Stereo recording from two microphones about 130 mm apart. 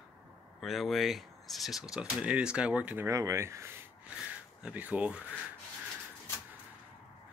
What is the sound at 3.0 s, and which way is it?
Speech, 25° right (ahead or behind).